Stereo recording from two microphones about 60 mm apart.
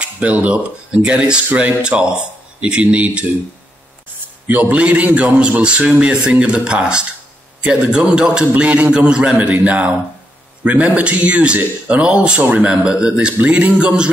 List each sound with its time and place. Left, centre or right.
0.0 s a man's voice: right
4.5 s a man's voice: right